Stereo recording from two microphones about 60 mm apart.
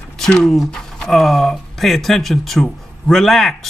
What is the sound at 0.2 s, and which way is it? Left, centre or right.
Speech, centre.